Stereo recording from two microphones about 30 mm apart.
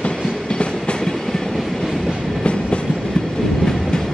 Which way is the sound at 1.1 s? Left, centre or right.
Centre.